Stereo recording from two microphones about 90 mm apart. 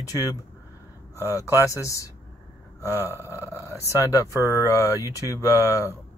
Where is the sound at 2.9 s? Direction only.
25° right (ahead or behind).